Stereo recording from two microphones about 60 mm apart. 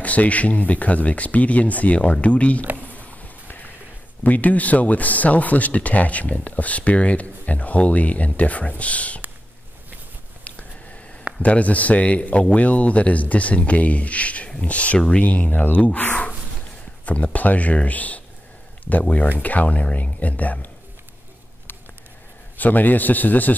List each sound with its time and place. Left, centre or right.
0.0 s speech: left
2.9 s a sound: left
4.2 s speech: left
11.4 s speech: left
22.6 s speech: left